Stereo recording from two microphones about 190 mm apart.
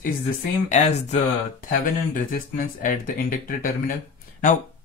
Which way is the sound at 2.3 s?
45° left (ahead or behind).